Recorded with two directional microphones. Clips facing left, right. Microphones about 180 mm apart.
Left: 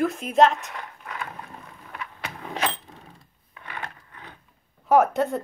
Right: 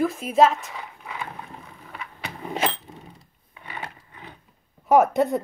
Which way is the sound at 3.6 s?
10° right (ahead or behind).